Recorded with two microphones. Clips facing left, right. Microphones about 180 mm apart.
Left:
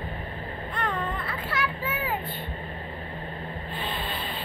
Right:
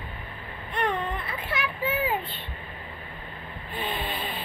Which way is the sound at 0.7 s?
20° right (ahead or behind).